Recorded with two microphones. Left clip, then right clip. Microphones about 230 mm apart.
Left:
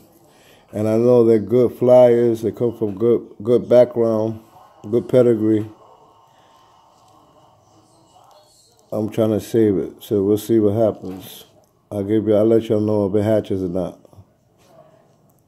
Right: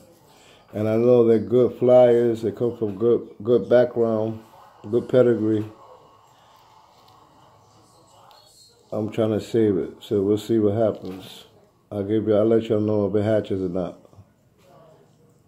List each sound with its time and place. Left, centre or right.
0.5 s speech: left
8.9 s speech: left